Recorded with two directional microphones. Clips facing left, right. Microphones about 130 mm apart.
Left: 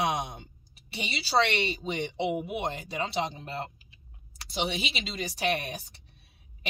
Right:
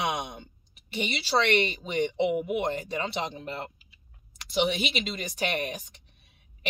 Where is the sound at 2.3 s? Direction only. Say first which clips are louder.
Right 4 dB; 35° left (ahead or behind).